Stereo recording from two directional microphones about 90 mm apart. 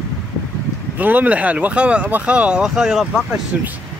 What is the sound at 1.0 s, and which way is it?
Speech, 20° right (ahead or behind).